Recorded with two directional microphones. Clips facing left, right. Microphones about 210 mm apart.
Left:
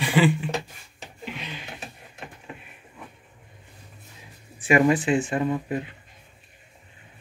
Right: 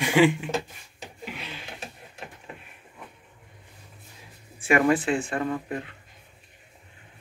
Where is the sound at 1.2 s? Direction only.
5° right (ahead or behind).